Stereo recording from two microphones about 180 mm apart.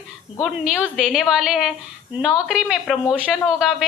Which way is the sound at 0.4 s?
5° right (ahead or behind).